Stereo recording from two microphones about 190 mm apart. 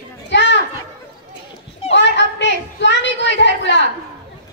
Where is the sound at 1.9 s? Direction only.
70° left (ahead or behind).